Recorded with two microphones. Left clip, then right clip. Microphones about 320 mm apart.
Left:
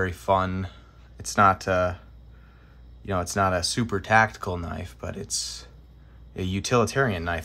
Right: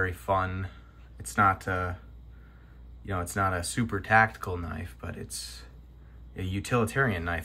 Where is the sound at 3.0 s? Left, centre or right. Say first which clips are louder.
Left 5 dB; centre.